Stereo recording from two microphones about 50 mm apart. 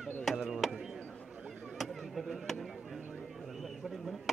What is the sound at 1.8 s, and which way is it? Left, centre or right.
Chop, centre.